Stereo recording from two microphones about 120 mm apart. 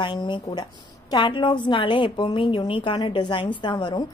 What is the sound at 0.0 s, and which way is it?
A woman's voice, 40° left (ahead or behind).